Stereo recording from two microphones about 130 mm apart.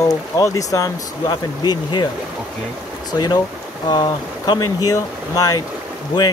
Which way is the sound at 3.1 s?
30° left (ahead or behind).